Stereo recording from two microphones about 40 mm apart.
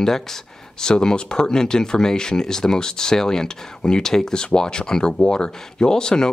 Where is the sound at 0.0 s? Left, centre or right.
Centre.